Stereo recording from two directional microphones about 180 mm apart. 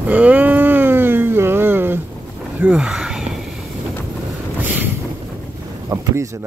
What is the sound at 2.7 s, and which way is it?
Speech, 5° right (ahead or behind).